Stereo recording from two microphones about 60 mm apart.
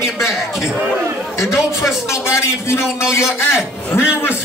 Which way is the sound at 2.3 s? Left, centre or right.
Left.